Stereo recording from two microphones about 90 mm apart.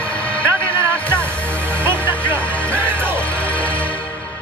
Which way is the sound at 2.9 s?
25° right (ahead or behind).